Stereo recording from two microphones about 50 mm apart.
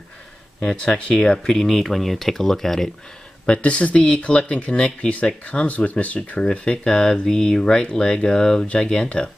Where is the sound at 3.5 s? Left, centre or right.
Left.